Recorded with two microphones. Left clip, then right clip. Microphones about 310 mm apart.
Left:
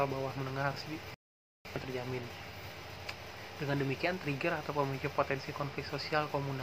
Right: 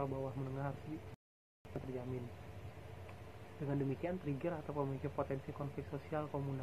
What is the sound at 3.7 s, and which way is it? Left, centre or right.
Speech, centre.